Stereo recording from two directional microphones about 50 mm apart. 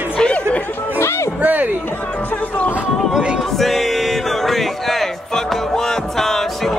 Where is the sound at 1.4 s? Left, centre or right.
Right.